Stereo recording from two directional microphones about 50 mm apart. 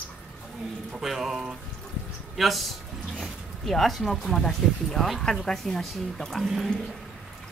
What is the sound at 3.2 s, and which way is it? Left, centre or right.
Speech, centre.